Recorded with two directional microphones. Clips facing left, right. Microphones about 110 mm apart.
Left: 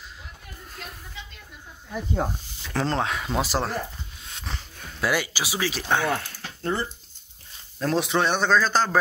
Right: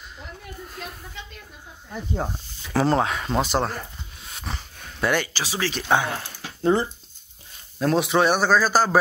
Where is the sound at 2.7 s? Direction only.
5° right (ahead or behind).